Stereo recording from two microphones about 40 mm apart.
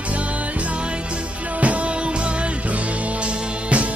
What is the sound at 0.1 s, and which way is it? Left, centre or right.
Music, right.